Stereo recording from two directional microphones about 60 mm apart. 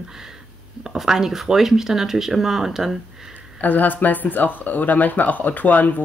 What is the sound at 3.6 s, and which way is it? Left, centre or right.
Speech, left.